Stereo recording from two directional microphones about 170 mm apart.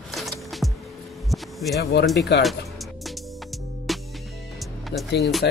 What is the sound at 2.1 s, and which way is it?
Speech, 75° left (ahead or behind).